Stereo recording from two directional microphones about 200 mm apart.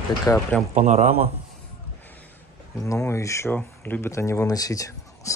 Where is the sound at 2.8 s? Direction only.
15° left (ahead or behind).